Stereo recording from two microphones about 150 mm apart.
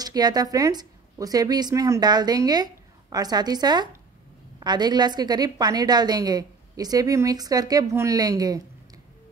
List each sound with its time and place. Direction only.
0.0 s a woman's voice: 25° right (ahead or behind)